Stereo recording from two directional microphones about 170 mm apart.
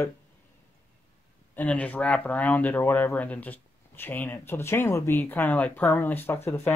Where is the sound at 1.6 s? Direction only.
10° left (ahead or behind).